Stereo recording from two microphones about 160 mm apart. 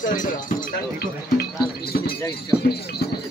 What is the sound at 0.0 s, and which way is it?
Speech, 55° left (ahead or behind).